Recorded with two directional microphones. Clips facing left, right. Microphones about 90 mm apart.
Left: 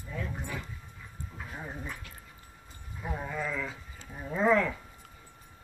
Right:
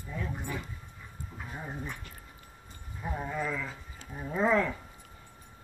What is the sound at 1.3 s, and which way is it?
Dog, 5° right (ahead or behind).